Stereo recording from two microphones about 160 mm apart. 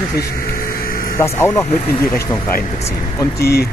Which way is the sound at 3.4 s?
85° left.